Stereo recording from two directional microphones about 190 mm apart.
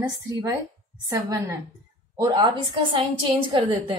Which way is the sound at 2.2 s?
20° right (ahead or behind).